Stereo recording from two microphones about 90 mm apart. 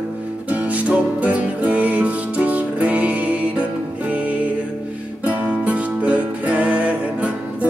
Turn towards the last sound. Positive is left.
turn(degrees=-15)  # may be behind; listen again after turning